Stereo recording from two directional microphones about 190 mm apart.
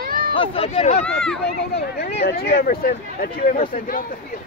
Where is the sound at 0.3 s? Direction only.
30° left (ahead or behind).